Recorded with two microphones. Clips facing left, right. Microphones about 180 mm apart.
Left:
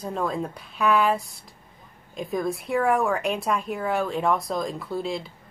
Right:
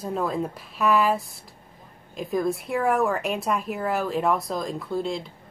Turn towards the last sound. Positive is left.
turn(degrees=0)  # may be behind; listen again after turning